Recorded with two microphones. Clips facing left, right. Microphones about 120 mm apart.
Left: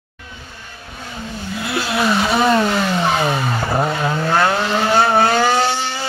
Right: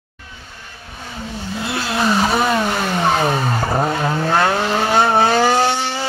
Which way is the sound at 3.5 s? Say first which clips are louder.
Even; 15° right (ahead or behind).